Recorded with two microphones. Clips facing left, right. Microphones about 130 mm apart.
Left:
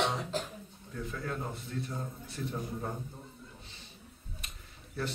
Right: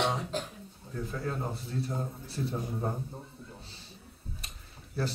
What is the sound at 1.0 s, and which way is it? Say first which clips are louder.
Speech: right 2 dB; 30° right (ahead or behind).